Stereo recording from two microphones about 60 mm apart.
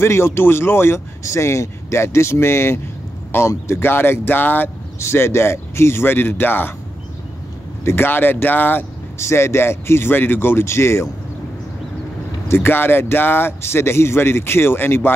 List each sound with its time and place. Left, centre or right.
0.0 s speech: left
5.0 s speech: left
7.8 s speech: left
9.2 s speech: left
12.4 s speech: left